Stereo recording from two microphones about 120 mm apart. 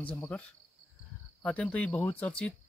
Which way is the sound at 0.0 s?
10° left (ahead or behind).